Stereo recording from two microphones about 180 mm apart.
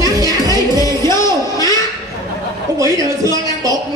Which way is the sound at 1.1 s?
20° left (ahead or behind).